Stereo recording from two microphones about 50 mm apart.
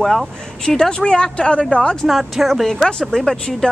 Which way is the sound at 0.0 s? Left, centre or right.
Centre.